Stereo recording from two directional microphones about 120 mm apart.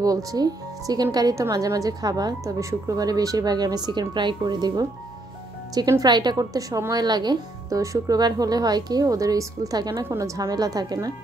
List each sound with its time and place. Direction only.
0.0 s a woman's voice: 30° right (ahead or behind)